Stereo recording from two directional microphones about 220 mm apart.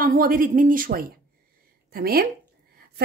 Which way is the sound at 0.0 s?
40° right (ahead or behind).